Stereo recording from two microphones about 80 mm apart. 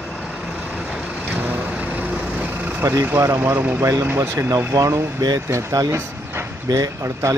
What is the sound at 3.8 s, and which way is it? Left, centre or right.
Speech, right.